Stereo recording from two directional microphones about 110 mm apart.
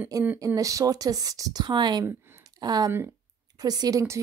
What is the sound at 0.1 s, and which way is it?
Speech, 30° right (ahead or behind).